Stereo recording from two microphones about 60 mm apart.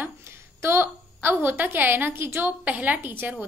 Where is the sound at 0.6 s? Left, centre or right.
Right.